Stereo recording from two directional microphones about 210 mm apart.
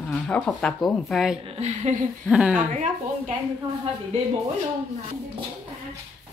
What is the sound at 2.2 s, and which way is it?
Speech, 5° right (ahead or behind).